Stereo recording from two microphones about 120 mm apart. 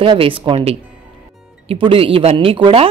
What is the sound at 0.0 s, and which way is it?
Speech, 50° right (ahead or behind).